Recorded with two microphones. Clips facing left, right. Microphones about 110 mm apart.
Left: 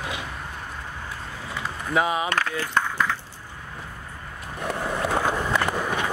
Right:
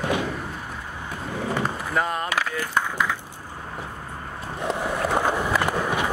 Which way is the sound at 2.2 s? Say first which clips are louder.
Even; 5° right (ahead or behind).